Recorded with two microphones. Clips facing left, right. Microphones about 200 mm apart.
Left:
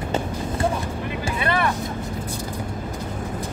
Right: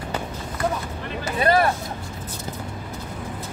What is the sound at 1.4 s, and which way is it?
Vehicle, 40° right (ahead or behind).